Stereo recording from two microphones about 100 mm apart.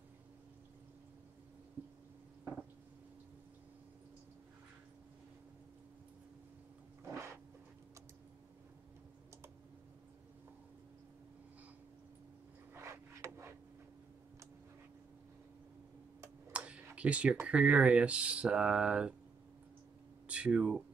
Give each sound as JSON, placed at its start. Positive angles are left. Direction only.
{"t": 7.1, "sound": "dog", "side_deg": -25}
{"t": 12.7, "sound": "a sound", "side_deg": -25}
{"t": 16.5, "sound": "tick-tock", "side_deg": -10}
{"t": 17.5, "sound": "speech", "side_deg": -10}
{"t": 20.2, "sound": "speech", "side_deg": -10}